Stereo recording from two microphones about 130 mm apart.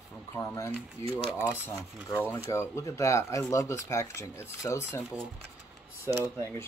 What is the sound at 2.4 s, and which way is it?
Speech, 20° left (ahead or behind).